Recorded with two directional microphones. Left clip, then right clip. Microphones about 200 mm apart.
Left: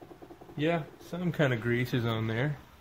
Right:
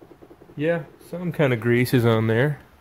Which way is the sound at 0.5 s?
20° right (ahead or behind).